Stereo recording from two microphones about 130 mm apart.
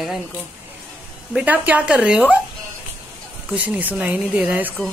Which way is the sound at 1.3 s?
10° right (ahead or behind).